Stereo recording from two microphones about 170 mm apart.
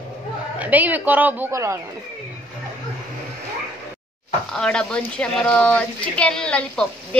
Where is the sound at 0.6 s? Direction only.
10° right (ahead or behind).